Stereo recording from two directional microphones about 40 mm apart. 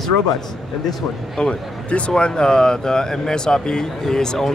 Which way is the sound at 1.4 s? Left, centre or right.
Left.